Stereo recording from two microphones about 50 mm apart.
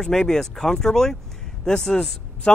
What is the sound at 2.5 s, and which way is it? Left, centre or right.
Speech, left.